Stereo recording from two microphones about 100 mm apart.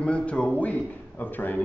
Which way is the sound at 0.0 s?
10° left (ahead or behind).